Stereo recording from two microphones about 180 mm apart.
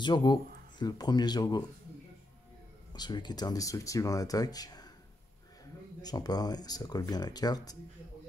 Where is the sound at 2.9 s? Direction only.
25° left (ahead or behind).